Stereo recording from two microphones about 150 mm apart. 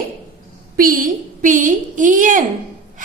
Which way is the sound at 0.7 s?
65° right (ahead or behind).